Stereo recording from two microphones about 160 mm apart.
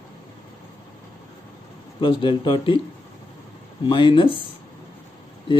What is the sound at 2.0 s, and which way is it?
Speech, 30° left (ahead or behind).